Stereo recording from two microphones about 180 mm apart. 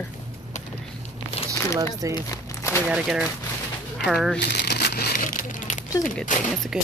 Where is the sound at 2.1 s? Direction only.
15° left (ahead or behind).